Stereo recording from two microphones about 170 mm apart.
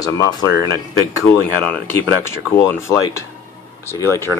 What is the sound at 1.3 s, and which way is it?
Speech, 40° left (ahead or behind).